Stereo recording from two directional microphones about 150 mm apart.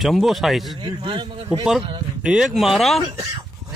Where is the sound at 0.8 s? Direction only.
35° right (ahead or behind).